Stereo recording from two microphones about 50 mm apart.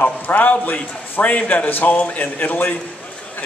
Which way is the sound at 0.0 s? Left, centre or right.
Left.